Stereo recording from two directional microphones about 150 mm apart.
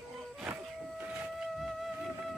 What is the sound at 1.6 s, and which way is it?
Music, centre (ahead or behind).